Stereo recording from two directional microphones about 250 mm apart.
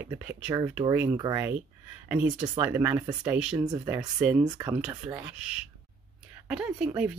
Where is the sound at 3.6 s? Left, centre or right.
Centre.